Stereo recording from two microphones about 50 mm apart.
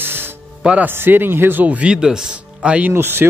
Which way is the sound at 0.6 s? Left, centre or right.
Right.